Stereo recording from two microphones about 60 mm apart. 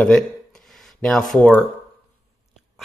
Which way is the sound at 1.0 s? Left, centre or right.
Centre.